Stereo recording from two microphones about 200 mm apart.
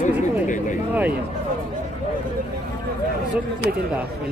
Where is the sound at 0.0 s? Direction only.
40° left (ahead or behind).